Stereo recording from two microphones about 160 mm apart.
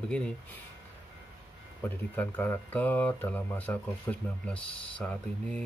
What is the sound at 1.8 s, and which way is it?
Speech, 10° left (ahead or behind).